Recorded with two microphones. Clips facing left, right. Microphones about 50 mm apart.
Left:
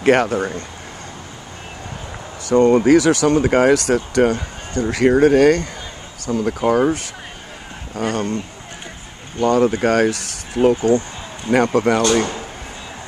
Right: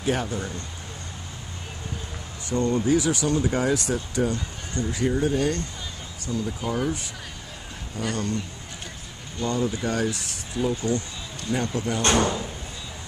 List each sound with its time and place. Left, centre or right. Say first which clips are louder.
0.0 s speech: left 11 dB; left
2.4 s speech: left 11 dB; left
6.2 s speech: left 10 dB; left
7.9 s speech: left 7 dB; left
9.4 s speech: left 11 dB; left
11.5 s speech: left 12 dB; left
12.2 s speech: left 2 dB; left